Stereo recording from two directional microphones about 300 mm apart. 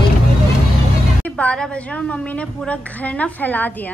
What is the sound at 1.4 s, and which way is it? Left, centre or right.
Speech, centre.